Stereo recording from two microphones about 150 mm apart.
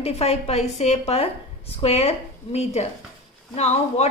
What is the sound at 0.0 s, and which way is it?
A woman's voice, 45° left (ahead or behind).